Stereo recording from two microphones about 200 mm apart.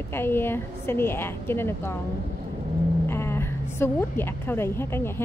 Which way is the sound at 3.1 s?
10° left (ahead or behind).